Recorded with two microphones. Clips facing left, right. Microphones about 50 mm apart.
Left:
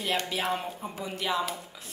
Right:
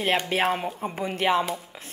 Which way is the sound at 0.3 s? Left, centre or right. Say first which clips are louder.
Right 6 dB; right.